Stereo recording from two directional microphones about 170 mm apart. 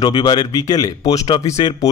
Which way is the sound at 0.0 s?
25° left (ahead or behind).